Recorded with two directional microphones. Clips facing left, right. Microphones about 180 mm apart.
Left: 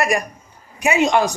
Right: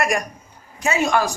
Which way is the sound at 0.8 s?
15° left (ahead or behind).